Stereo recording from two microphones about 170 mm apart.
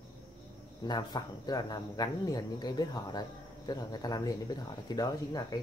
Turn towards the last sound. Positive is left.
turn(degrees=20)  # may be behind; listen again after turning